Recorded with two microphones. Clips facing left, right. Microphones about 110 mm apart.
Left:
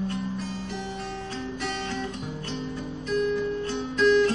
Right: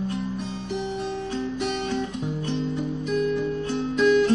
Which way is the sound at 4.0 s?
10° right (ahead or behind).